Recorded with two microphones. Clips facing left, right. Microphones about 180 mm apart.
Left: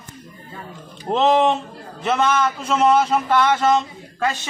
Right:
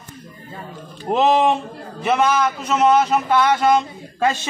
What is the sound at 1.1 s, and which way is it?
A man's voice, 5° right (ahead or behind).